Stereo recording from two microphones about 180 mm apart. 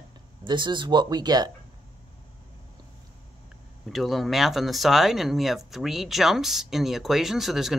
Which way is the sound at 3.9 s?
Centre (ahead or behind).